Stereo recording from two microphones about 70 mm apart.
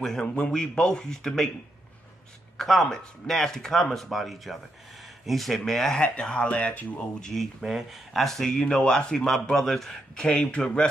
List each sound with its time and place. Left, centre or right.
0.0 s speech: centre
2.5 s speech: centre
7.2 s speech: centre